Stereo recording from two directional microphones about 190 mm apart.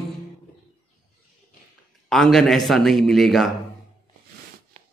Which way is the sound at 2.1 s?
Centre (ahead or behind).